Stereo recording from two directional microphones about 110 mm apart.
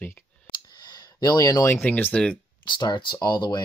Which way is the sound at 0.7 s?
40° left (ahead or behind).